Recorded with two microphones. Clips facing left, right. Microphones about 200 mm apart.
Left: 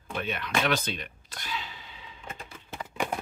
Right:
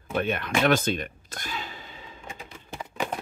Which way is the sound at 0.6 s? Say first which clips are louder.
Right 6 dB; 50° right (ahead or behind).